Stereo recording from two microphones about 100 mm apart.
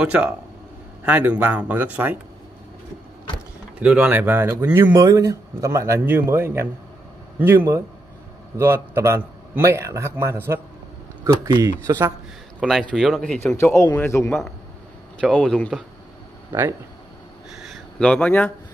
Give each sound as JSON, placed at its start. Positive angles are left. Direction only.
{"t": 0.0, "sound": "speech", "side_deg": -10}
{"t": 3.8, "sound": "speech", "side_deg": -15}
{"t": 4.7, "sound": "a man's voice", "side_deg": -30}
{"t": 12.5, "sound": "a man's voice", "side_deg": 0}
{"t": 13.4, "sound": "a man's voice", "side_deg": 20}
{"t": 15.1, "sound": "a man's voice", "side_deg": 5}
{"t": 17.6, "sound": "a sound", "side_deg": 10}